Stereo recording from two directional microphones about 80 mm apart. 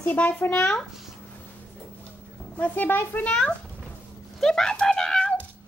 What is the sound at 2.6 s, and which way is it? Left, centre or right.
Speech, left.